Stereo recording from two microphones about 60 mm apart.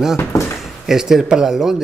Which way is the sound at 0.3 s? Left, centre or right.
Left.